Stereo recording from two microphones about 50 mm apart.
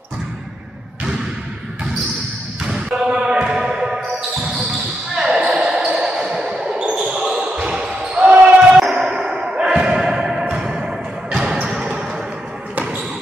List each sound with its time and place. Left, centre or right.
2.6 s basketball bounce: centre
8.7 s basketball bounce: centre; by 13.0 s right